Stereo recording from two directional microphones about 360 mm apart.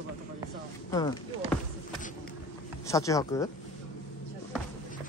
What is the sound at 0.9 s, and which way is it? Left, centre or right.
Speech, centre.